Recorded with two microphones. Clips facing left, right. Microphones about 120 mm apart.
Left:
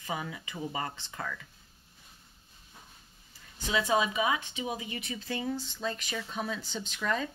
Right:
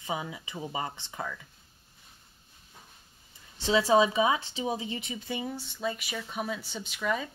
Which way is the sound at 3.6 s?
30° right (ahead or behind).